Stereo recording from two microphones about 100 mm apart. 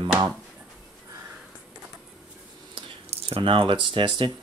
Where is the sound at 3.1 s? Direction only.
65° right (ahead or behind).